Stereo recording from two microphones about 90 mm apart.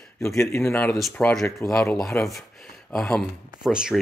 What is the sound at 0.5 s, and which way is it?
Speech, 25° left (ahead or behind).